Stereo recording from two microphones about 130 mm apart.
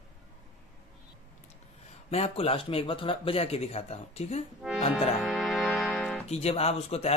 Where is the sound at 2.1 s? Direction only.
50° left (ahead or behind).